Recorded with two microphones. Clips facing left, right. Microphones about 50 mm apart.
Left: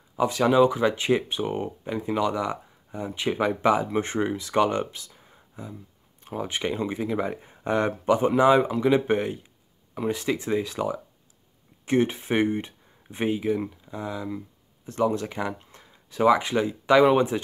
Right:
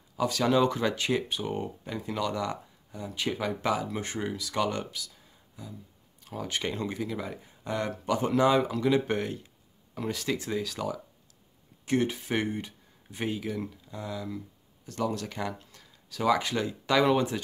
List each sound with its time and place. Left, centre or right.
0.1 s speech: left
6.3 s speech: left